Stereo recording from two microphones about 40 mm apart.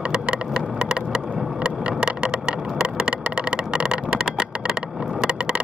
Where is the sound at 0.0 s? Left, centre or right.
Right.